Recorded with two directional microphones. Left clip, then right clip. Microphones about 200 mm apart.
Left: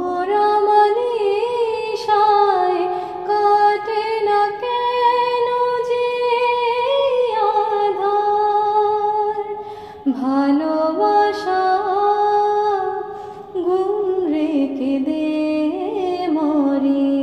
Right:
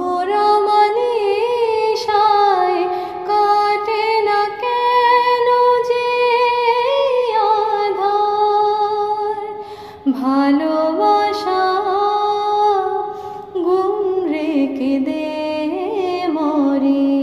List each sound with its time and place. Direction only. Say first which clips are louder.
0.3 s music: right 1 dB; 25° right (ahead or behind)
5.8 s singing: right 3 dB; 15° right (ahead or behind)
10.2 s music: right 2 dB; 15° right (ahead or behind)
14.4 s music: right 1 dB; 15° right (ahead or behind)
16.3 s music: right 1 dB; 15° right (ahead or behind)